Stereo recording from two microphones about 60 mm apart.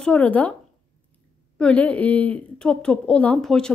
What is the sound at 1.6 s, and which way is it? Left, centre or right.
A woman's voice, left.